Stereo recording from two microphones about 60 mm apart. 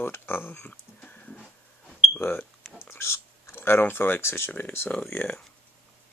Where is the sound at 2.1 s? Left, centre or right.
Left.